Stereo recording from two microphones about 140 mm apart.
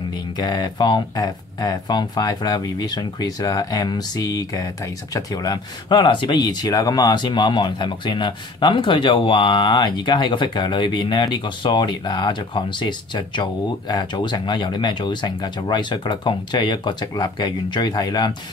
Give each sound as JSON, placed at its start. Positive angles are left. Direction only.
{"t": 0.1, "sound": "speech", "side_deg": 30}